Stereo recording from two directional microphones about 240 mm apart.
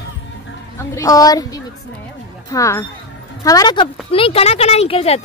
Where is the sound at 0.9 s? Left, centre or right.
Centre.